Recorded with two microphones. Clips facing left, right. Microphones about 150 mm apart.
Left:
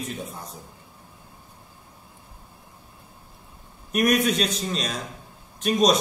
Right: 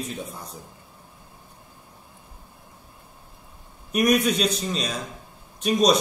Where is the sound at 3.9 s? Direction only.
Centre (ahead or behind).